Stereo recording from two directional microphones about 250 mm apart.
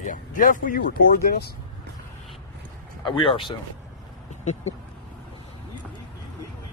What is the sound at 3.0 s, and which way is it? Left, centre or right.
Speech, left.